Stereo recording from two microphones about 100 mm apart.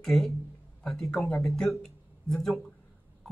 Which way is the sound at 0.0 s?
Centre (ahead or behind).